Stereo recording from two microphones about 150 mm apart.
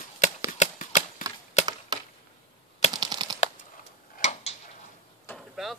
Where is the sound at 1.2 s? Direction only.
20° right (ahead or behind).